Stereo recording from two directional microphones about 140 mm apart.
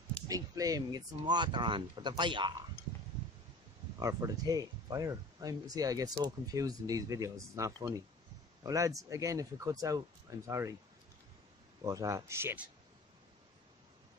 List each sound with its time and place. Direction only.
0.3 s speech: 25° right (ahead or behind)
4.0 s speech: 20° right (ahead or behind)
11.8 s speech: 25° right (ahead or behind)